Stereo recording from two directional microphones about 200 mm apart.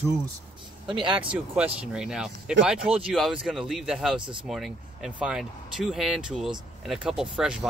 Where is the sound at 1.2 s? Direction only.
5° right (ahead or behind).